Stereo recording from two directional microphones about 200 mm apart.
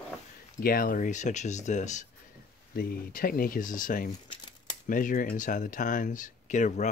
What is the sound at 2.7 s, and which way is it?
Speech, 50° left (ahead or behind).